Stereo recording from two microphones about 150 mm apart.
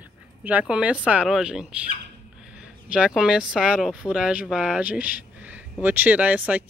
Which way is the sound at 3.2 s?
5° right (ahead or behind).